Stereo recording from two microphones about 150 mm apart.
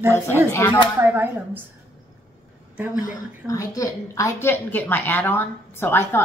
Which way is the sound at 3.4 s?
20° left (ahead or behind).